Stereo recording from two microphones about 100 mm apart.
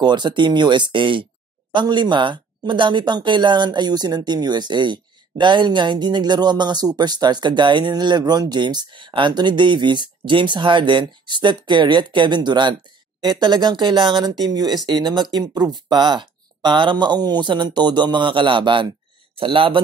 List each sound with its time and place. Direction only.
0.0 s speech: 50° right (ahead or behind)
19.3 s speech: 65° right (ahead or behind)